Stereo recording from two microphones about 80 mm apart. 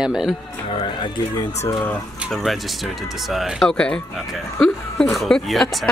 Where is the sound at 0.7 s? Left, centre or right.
Left.